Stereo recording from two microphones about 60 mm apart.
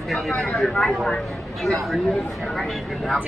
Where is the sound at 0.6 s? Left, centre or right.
Centre.